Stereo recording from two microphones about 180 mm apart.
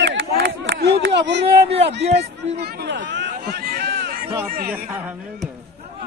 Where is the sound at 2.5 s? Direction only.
75° right (ahead or behind).